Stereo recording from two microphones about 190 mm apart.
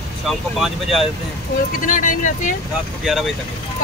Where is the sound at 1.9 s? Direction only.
45° left (ahead or behind).